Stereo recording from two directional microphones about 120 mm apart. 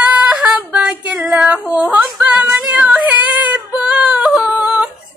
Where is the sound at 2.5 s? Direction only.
10° right (ahead or behind).